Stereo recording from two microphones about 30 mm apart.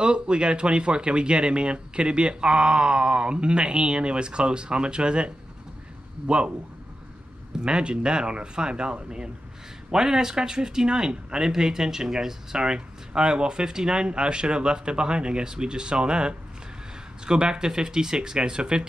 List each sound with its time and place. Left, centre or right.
0.0 s speech: right
7.6 s speech: right